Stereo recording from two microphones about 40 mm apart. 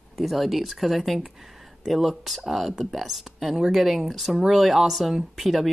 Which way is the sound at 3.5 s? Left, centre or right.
Centre.